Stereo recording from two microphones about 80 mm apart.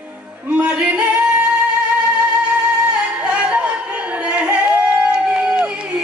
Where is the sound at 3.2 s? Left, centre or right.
Centre.